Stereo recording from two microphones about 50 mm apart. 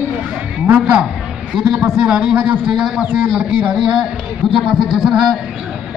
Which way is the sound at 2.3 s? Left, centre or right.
Right.